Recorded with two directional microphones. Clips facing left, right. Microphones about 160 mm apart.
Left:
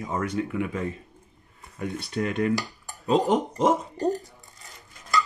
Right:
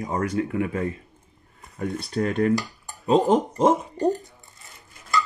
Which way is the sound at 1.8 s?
40° right (ahead or behind).